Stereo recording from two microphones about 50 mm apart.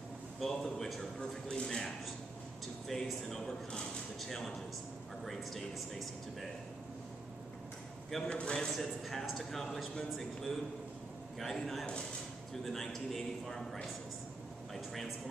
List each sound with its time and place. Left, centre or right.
0.4 s a man's voice: centre
5.2 s a man's voice: centre
8.3 s speech: left
8.5 s a man's voice: centre